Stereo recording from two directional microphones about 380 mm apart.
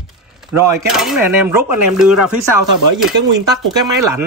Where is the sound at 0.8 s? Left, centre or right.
Centre.